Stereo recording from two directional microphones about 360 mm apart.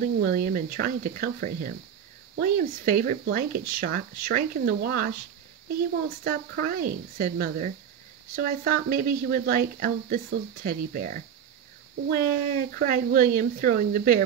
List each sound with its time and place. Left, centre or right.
0.0 s speech: right
6.2 s speech: right